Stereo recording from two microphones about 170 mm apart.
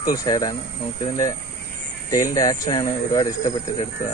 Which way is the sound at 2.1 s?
20° left (ahead or behind).